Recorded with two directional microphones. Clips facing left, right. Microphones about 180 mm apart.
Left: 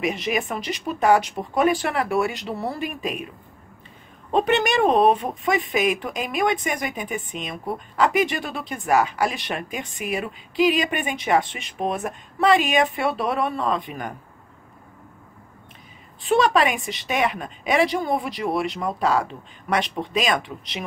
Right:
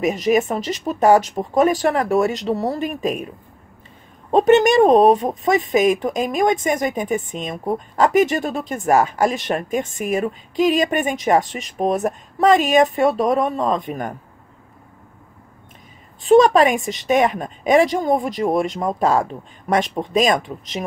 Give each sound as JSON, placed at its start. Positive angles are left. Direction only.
{"t": 0.0, "sound": "speech", "side_deg": -40}
{"t": 4.3, "sound": "speech", "side_deg": -45}
{"t": 16.2, "sound": "speech", "side_deg": -45}